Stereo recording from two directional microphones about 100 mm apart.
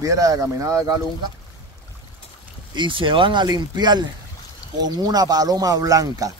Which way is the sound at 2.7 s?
55° right (ahead or behind).